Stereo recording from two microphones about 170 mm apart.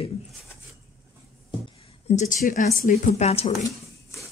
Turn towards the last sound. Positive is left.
turn(degrees=40)  # may be behind; listen again after turning